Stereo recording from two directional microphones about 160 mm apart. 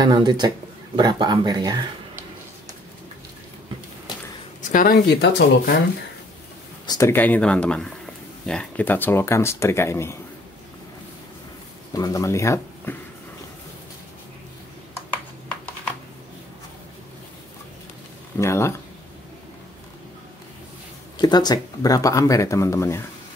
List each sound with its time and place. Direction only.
0.0 s speech: 30° right (ahead or behind)
4.6 s speech: 55° left (ahead or behind); by 5.8 s 75° left (ahead or behind)
6.9 s speech: 15° left (ahead or behind)
11.9 s speech: 20° left (ahead or behind)
18.4 s speech: 15° left (ahead or behind)
21.2 s speech: 25° left (ahead or behind)